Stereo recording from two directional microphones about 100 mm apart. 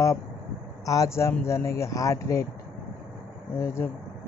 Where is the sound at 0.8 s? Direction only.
30° left (ahead or behind).